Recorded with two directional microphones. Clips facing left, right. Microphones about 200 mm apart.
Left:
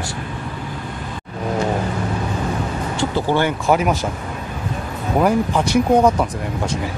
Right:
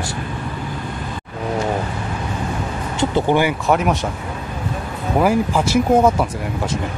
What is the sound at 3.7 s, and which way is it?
Speech, centre (ahead or behind).